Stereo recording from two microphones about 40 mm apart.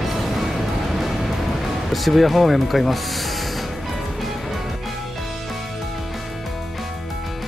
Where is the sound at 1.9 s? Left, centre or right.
Centre.